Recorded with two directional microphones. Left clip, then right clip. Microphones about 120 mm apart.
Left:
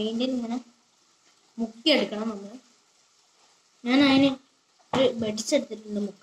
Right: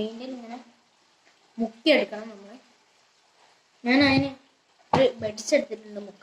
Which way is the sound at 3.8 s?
35° left (ahead or behind).